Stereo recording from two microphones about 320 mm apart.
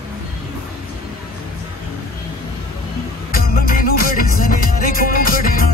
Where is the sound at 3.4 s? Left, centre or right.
Left.